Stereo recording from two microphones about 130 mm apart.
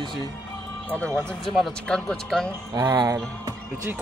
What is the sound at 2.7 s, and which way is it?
Speech, 30° right (ahead or behind).